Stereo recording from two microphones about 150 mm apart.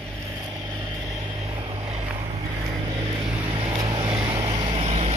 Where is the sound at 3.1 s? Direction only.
10° right (ahead or behind).